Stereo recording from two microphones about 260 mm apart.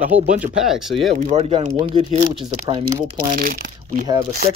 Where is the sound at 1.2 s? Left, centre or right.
Right.